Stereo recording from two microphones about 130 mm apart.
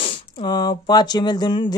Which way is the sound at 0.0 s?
35° left (ahead or behind).